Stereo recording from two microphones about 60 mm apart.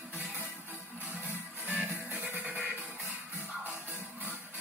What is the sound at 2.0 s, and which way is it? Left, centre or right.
Music, right.